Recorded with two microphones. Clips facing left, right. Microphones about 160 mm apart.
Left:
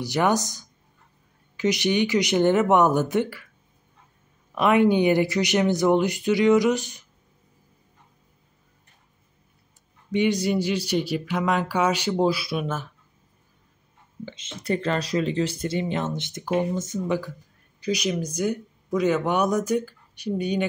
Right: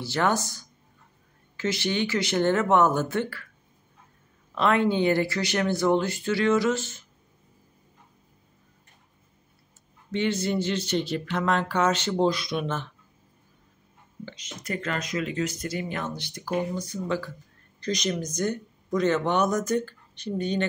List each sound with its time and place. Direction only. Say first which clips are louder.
0.0 s speech: left 3 dB; 15° left (ahead or behind)
4.6 s speech: left 4 dB; 15° left (ahead or behind)
10.1 s speech: left 4 dB; 15° left (ahead or behind)
14.2 s speech: left 6 dB; 25° left (ahead or behind)
17.7 s speech: left 3 dB; 10° left (ahead or behind)